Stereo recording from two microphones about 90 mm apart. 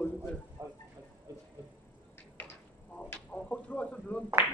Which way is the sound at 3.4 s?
15° left (ahead or behind).